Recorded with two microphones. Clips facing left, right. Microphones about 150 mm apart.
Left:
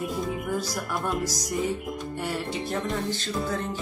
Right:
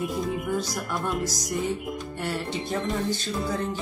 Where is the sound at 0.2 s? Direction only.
Centre (ahead or behind).